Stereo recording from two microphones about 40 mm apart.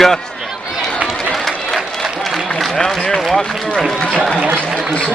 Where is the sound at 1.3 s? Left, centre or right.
Centre.